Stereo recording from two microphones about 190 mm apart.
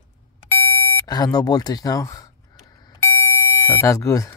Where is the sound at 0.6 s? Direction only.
15° left (ahead or behind).